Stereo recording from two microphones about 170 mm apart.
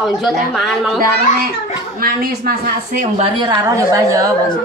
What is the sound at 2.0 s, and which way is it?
A woman's voice, 60° right (ahead or behind).